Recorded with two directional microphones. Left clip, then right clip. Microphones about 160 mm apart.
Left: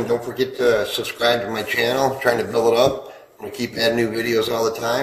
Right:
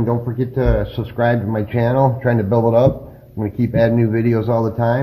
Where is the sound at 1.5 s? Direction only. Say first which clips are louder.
Right 2 dB; 35° right (ahead or behind).